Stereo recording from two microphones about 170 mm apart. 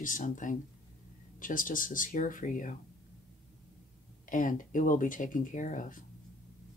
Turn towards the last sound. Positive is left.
turn(degrees=50)  # may be behind; listen again after turning